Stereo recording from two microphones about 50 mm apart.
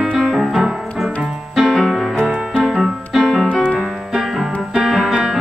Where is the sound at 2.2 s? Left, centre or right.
Centre.